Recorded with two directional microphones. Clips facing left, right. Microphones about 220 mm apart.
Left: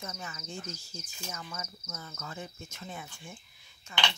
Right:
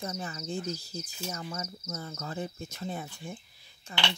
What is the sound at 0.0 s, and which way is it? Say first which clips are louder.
Speech: right 6 dB; 35° right (ahead or behind).